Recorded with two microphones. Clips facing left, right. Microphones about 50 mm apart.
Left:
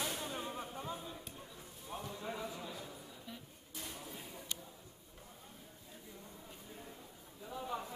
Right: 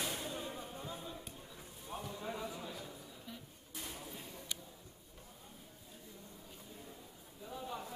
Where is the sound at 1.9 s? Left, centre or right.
Centre.